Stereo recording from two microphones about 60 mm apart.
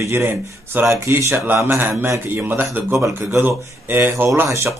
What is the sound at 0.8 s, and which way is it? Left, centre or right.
Speech, right.